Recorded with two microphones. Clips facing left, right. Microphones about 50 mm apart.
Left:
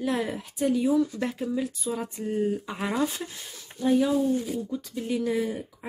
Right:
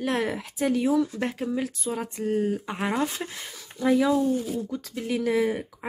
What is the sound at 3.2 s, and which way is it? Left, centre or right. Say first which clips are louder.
Speech: right 2 dB; right.